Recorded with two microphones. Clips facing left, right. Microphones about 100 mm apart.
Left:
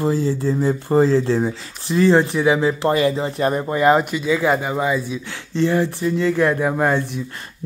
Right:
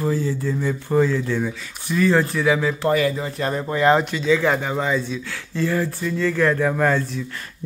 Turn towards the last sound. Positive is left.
turn(degrees=20)  # may be behind; listen again after turning